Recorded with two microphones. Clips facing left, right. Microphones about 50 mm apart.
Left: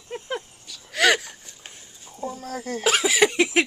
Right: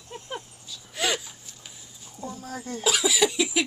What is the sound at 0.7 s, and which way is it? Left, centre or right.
Wheeze, left.